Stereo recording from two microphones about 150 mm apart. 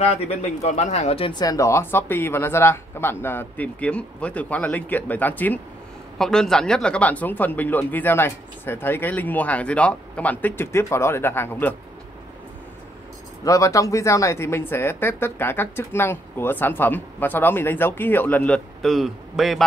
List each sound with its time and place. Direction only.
0.1 s speech: 45° left (ahead or behind)
1.4 s speech: 25° left (ahead or behind)
13.4 s speech: 20° left (ahead or behind); by 19.6 s centre (ahead or behind)